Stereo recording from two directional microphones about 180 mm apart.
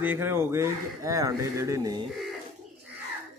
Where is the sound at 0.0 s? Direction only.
10° right (ahead or behind).